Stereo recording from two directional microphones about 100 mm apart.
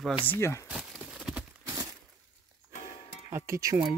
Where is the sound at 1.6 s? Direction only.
35° right (ahead or behind).